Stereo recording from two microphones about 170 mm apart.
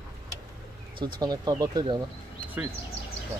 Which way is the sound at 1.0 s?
25° right (ahead or behind).